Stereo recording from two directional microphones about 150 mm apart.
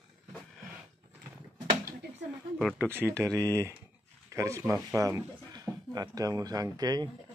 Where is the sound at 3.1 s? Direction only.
10° left (ahead or behind).